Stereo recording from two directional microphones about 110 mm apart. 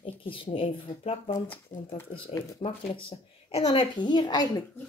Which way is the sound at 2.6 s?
55° left (ahead or behind).